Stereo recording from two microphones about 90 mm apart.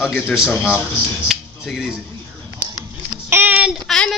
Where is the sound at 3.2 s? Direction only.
25° right (ahead or behind).